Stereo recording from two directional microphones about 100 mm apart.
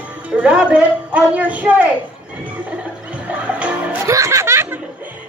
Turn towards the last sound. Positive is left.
turn(degrees=-25)  # may be behind; listen again after turning